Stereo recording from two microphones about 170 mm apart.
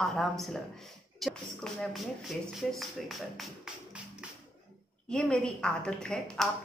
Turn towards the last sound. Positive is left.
turn(degrees=5)  # may be behind; listen again after turning